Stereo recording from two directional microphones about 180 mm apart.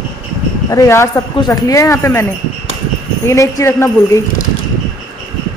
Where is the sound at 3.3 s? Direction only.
15° left (ahead or behind).